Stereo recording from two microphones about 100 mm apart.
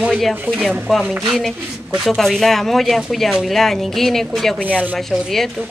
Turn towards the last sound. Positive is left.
turn(degrees=0)  # may be behind; listen again after turning